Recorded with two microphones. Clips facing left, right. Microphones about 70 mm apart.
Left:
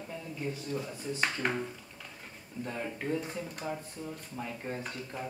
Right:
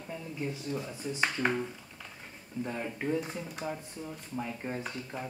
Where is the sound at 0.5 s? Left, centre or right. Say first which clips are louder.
Left 3 dB; centre.